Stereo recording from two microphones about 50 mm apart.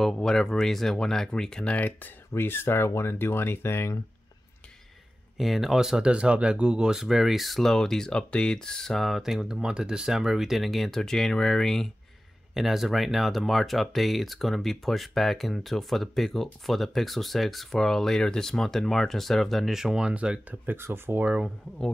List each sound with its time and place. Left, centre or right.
0.0 s speech: centre
1.7 s speech: left
2.3 s speech: left
5.4 s speech: centre
6.1 s speech: right; by 9.2 s centre
9.2 s speech: centre
12.5 s speech: centre
20.1 s speech: right
20.4 s speech: right